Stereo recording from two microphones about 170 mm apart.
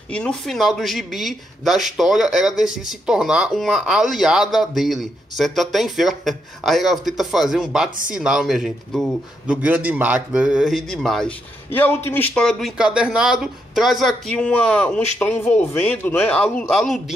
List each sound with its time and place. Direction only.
0.1 s a man's voice: 5° left (ahead or behind)